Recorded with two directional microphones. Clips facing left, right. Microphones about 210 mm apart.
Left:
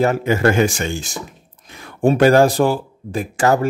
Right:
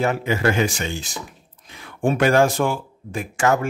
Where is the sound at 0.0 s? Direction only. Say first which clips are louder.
Left 5 dB; 45° left (ahead or behind).